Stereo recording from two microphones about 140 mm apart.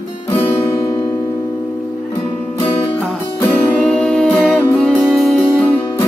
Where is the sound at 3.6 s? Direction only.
5° left (ahead or behind).